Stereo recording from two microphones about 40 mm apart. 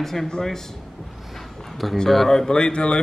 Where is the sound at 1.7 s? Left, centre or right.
Centre.